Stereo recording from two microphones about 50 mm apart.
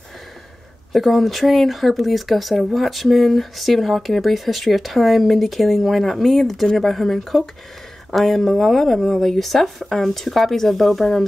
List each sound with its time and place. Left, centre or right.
0.9 s speech: centre